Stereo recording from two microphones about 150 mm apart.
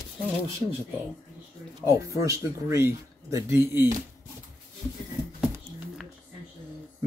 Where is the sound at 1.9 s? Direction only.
20° right (ahead or behind).